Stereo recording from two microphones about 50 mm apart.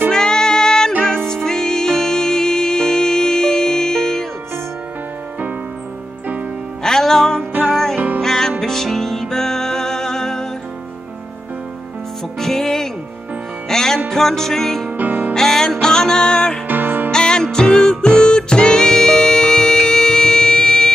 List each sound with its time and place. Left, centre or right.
0.1 s music: centre
6.8 s music: centre
12.4 s music: centre
14.9 s music: right
15.3 s music: centre
16.6 s music: right
17.1 s music: centre